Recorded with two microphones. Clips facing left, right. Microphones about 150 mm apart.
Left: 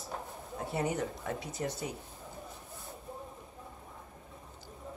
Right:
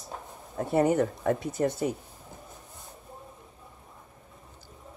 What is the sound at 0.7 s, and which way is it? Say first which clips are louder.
Speech: right 10 dB; 55° right (ahead or behind).